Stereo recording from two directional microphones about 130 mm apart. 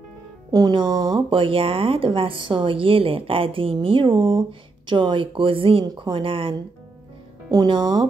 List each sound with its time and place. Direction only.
0.5 s speech: 30° right (ahead or behind)
7.5 s speech: 35° right (ahead or behind)